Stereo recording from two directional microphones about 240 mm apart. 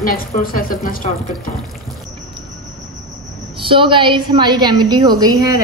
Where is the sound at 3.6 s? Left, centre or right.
Right.